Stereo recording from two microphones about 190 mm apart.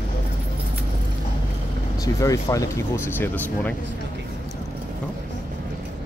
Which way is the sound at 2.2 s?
15° left (ahead or behind).